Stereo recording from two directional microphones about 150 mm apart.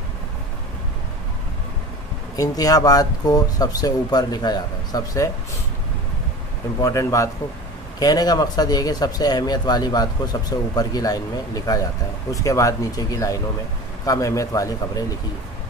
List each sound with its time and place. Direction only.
2.3 s speech: 25° left (ahead or behind)
6.8 s speech: 20° left (ahead or behind)